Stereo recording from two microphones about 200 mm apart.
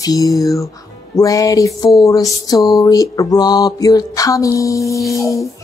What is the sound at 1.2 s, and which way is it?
Music, 15° left (ahead or behind).